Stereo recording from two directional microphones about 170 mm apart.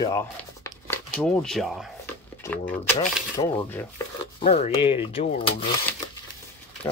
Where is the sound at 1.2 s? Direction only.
Centre (ahead or behind).